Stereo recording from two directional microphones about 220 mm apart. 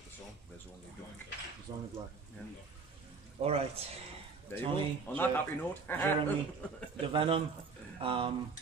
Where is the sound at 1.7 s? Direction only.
20° right (ahead or behind).